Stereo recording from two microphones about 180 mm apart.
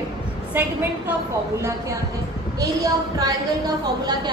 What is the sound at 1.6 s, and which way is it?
A woman's voice, 15° right (ahead or behind).